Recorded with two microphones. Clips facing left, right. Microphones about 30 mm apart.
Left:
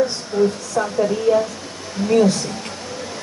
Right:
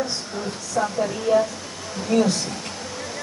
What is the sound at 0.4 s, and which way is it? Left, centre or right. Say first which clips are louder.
Speech: left 7 dB; centre.